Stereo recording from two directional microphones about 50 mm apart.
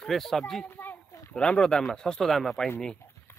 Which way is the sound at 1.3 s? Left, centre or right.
Left.